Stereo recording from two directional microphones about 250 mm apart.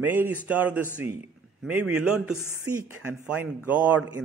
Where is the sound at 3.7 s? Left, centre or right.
Centre.